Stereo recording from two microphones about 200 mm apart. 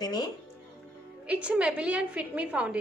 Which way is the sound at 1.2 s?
5° right (ahead or behind).